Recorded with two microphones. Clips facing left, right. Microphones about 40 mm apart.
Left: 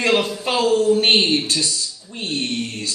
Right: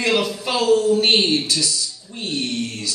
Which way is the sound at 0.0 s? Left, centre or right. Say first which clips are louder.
Left 1 dB; left.